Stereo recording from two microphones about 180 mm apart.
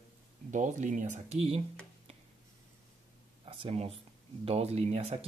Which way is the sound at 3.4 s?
30° right (ahead or behind).